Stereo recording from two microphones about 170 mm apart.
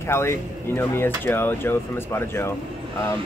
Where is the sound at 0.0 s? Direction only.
15° left (ahead or behind).